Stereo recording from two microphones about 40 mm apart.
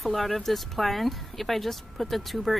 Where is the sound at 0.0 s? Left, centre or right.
Centre.